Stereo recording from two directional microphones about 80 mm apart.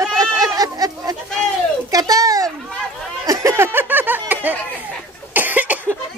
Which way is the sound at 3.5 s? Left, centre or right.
Right.